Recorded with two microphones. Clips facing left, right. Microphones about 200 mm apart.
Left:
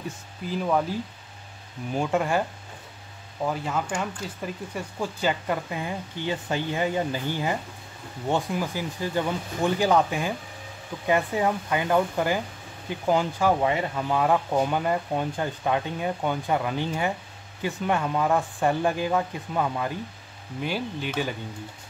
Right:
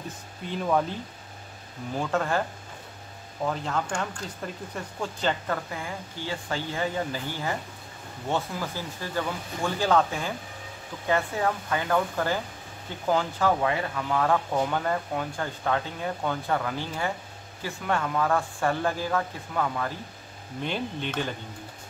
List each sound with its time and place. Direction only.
0.5 s speech: 5° left (ahead or behind)
2.0 s speech: 15° left (ahead or behind)
3.4 s speech: 10° left (ahead or behind)
20.6 s speech: 5° left (ahead or behind)